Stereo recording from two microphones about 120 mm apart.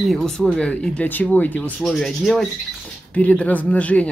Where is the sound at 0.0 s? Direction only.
Centre (ahead or behind).